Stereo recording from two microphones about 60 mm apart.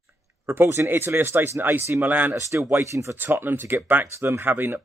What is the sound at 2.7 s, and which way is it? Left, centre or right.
Speech, right.